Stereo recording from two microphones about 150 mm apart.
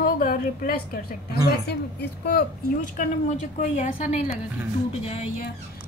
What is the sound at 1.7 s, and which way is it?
A woman's voice, 90° left.